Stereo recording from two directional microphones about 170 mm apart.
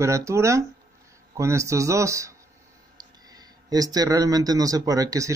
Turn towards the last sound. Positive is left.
turn(degrees=-20)  # may be behind; listen again after turning